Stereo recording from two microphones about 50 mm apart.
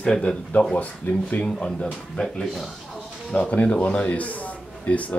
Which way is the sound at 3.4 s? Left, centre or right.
Left.